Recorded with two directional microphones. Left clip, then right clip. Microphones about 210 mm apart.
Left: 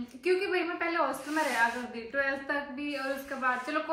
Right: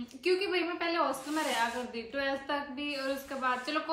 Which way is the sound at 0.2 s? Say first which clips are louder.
Left 1 dB; 15° right (ahead or behind).